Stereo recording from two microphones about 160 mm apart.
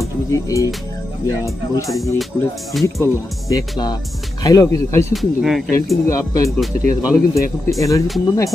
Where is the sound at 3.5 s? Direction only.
25° left (ahead or behind).